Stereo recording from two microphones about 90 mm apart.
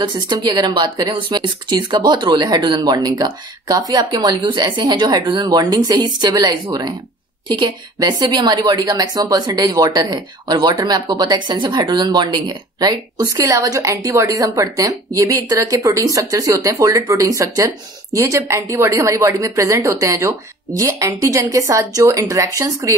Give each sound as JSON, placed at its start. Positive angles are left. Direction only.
{"t": 0.0, "sound": "a woman's voice", "side_deg": -55}